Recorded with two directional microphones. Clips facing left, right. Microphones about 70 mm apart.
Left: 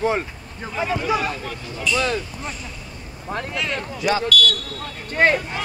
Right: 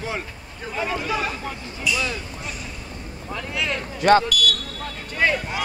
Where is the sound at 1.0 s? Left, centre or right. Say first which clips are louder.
Left 3 dB; centre.